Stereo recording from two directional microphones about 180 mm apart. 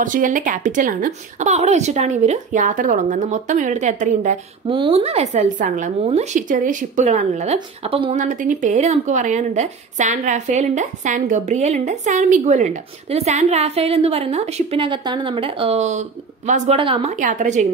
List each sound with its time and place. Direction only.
0.0 s a woman's voice: 45° right (ahead or behind)
4.6 s a woman's voice: 30° right (ahead or behind)
8.2 s a woman's voice: 45° right (ahead or behind)
16.7 s a woman's voice: 30° right (ahead or behind)